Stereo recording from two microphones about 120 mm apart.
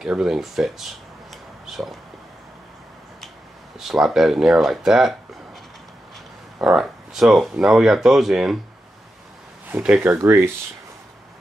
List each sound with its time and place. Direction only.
0.0 s speech: 5° right (ahead or behind)
1.7 s a sound: centre (ahead or behind)
3.8 s speech: centre (ahead or behind)
6.6 s speech: 5° right (ahead or behind)
9.7 s speech: 10° right (ahead or behind)
10.2 s speech: 20° right (ahead or behind)